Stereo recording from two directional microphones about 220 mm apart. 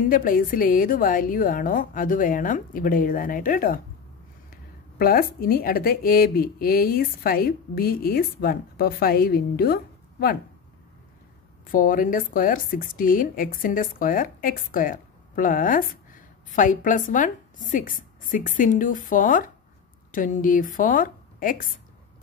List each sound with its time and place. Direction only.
0.1 s speech: 40° left (ahead or behind)
11.6 s a woman's voice: 40° left (ahead or behind)